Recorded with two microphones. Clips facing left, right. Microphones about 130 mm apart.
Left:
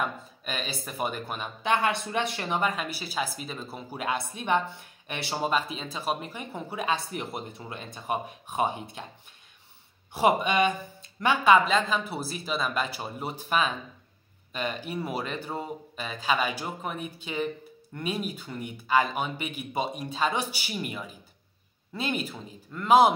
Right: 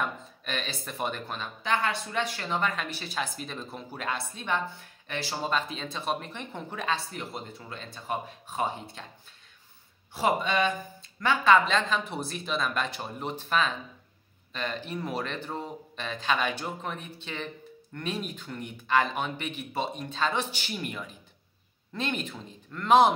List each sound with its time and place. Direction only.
0.0 s speech: 10° left (ahead or behind)
10.1 s speech: 15° left (ahead or behind)